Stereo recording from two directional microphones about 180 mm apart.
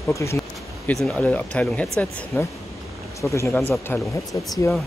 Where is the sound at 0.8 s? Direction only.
5° left (ahead or behind).